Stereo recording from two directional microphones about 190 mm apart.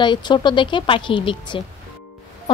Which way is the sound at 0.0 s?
25° left (ahead or behind).